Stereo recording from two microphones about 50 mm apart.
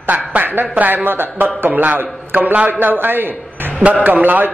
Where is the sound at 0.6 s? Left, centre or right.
Right.